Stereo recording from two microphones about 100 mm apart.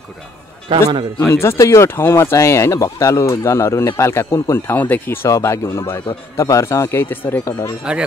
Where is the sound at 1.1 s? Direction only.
25° left (ahead or behind).